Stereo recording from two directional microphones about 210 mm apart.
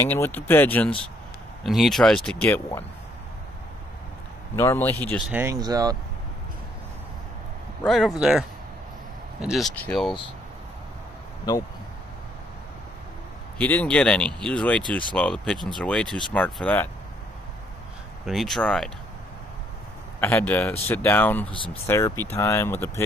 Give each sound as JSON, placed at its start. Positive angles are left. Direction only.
{"t": 0.0, "sound": "speech", "side_deg": 10}
{"t": 4.6, "sound": "speech", "side_deg": 10}
{"t": 5.3, "sound": "speech", "side_deg": -15}
{"t": 7.8, "sound": "speech", "side_deg": 5}
{"t": 13.6, "sound": "speech", "side_deg": 5}
{"t": 18.2, "sound": "speech", "side_deg": 0}
{"t": 20.2, "sound": "speech", "side_deg": 10}